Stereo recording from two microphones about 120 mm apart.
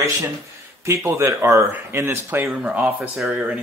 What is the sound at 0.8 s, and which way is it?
A man's voice, 25° right (ahead or behind).